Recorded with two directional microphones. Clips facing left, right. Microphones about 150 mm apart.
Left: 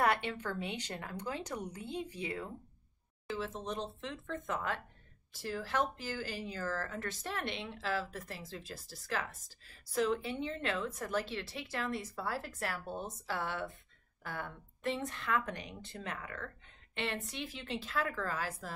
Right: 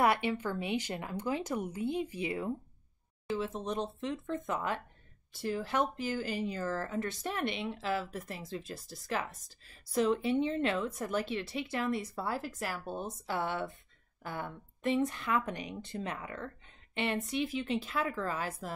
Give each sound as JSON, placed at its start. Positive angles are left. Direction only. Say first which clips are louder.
{"t": 0.0, "sound": "a woman's voice", "louder": "right 3 dB", "side_deg": -10}